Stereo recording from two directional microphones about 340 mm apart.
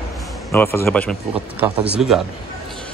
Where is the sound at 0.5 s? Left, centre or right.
Centre.